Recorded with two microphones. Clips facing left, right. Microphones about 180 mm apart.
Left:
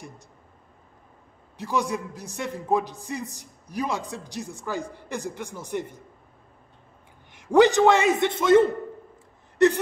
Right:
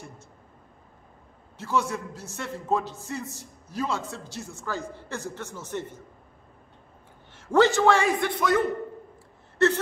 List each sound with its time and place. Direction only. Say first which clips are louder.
1.6 s a man's voice: left 1 dB; 15° left (ahead or behind)
7.3 s a man's voice: left 3 dB; 15° left (ahead or behind)
9.6 s whimper: left 3 dB; 15° left (ahead or behind)